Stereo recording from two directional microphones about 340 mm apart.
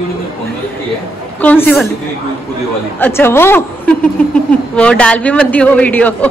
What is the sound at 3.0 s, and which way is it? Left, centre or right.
A woman's voice, centre.